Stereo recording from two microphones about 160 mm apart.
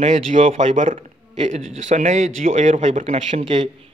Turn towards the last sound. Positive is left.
turn(degrees=-45)  # may be behind; listen again after turning